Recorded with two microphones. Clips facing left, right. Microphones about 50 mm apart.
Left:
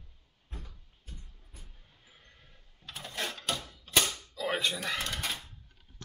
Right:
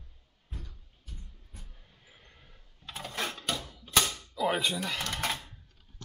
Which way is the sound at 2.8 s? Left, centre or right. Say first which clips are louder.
Right 2 dB; right.